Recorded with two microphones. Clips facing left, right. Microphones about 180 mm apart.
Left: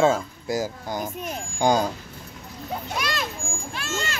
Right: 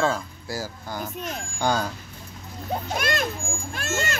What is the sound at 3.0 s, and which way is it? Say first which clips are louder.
A child's voice: right 3 dB; 50° right (ahead or behind).